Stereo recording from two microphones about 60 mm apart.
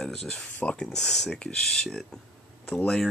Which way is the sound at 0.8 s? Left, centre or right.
Centre.